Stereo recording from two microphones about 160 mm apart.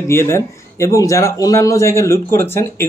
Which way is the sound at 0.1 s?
15° left (ahead or behind).